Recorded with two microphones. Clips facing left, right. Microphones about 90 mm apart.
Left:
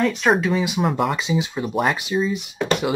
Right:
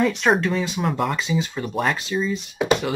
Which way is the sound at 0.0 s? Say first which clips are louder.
Even; centre (ahead or behind).